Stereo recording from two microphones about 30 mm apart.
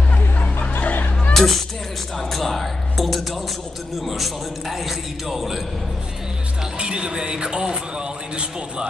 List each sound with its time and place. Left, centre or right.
0.4 s music: left
1.3 s music: centre
2.2 s a man's voice: centre
6.8 s a man's voice: right